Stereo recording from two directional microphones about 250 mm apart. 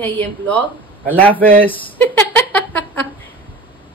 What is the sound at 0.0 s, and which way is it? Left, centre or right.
A woman's voice, centre.